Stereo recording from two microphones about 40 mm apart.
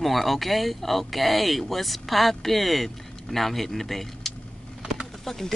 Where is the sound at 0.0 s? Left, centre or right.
Centre.